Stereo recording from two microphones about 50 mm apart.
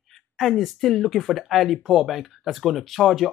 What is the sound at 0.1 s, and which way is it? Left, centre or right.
Speech, centre.